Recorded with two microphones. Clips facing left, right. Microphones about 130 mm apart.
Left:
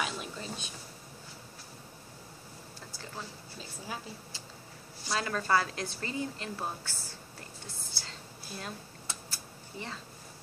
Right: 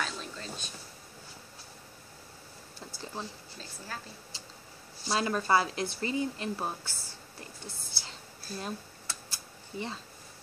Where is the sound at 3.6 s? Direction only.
10° left (ahead or behind).